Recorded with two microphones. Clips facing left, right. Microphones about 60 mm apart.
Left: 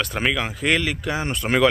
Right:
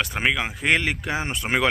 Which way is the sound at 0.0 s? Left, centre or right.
Centre.